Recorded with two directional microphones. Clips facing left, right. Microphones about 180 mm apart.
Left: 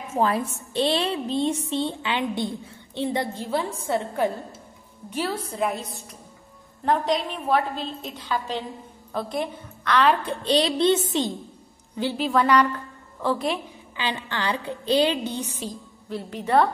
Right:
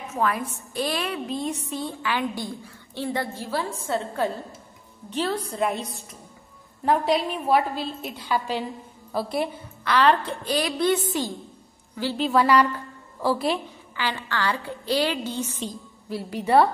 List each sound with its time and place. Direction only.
0.1 s a woman's voice: 30° left (ahead or behind); by 10.1 s 5° right (ahead or behind)
10.2 s a woman's voice: 20° left (ahead or behind)
12.2 s a woman's voice: 5° right (ahead or behind)
13.9 s a woman's voice: 20° left (ahead or behind)
15.6 s a woman's voice: 5° right (ahead or behind)